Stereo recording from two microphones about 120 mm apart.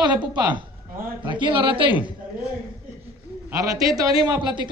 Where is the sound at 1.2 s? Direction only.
40° right (ahead or behind).